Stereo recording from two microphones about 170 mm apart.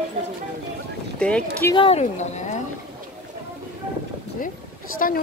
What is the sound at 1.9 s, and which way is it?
Speech, 40° left (ahead or behind).